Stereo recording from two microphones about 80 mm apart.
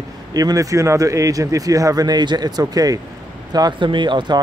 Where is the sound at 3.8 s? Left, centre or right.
Right.